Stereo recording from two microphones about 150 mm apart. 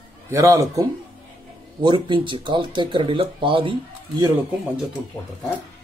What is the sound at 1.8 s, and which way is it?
Speech, 30° right (ahead or behind).